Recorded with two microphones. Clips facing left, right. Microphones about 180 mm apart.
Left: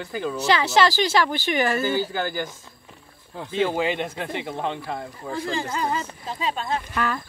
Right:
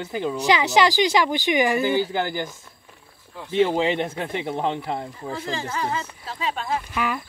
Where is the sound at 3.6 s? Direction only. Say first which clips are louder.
Right 2 dB; 25° right (ahead or behind).